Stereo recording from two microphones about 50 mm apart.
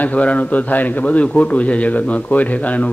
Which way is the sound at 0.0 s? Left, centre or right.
Left.